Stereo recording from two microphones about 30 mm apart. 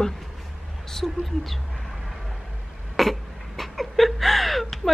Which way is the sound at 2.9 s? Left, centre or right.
Centre.